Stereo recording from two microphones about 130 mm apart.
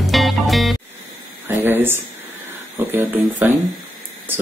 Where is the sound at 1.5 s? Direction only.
15° right (ahead or behind).